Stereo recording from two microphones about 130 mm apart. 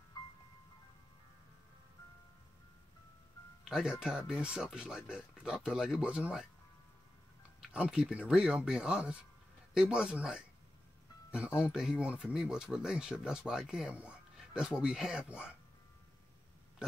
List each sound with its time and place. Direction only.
3.6 s speech: 5° right (ahead or behind)
7.6 s speech: 10° right (ahead or behind)